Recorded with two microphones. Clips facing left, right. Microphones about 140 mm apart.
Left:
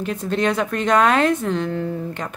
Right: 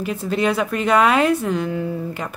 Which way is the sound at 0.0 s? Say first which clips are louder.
Right 1 dB; 5° right (ahead or behind).